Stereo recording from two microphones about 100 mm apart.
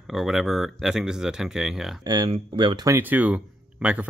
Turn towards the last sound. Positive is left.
turn(degrees=-15)  # may be behind; listen again after turning